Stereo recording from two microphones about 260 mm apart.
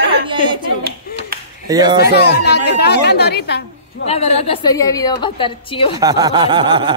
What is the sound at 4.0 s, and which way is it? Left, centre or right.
A woman's voice, left.